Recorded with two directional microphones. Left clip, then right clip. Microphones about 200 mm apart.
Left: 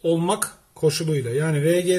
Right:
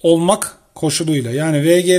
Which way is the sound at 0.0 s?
45° right (ahead or behind).